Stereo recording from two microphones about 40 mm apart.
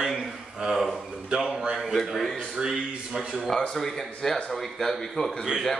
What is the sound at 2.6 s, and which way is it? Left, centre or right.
Speech, right.